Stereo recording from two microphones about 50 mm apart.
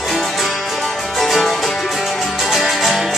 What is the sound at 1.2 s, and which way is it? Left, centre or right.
Music, centre.